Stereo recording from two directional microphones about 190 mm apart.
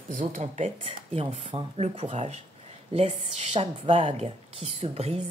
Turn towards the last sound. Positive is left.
turn(degrees=-35)  # may be behind; listen again after turning